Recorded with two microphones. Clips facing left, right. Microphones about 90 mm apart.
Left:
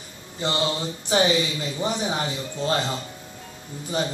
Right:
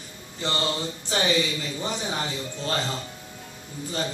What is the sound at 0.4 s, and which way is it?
A man's voice, 15° left (ahead or behind).